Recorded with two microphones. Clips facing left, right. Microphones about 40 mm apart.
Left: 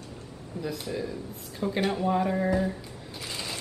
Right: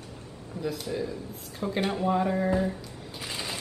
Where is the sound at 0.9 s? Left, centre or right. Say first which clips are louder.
Right 1 dB; centre.